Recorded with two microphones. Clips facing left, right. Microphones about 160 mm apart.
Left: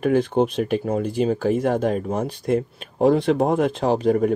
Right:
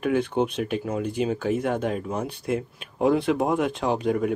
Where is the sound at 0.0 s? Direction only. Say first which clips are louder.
Left 4 dB; 35° left (ahead or behind).